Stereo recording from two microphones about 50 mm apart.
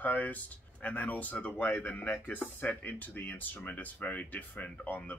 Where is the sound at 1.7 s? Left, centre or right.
Left.